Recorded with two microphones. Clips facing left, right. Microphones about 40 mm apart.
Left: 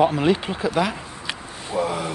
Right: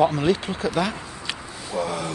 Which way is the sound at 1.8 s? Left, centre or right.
Centre.